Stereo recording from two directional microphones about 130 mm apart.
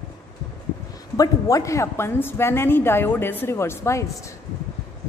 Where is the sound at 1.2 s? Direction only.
25° left (ahead or behind).